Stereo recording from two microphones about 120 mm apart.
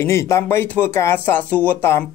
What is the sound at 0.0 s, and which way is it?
Speech, 20° left (ahead or behind).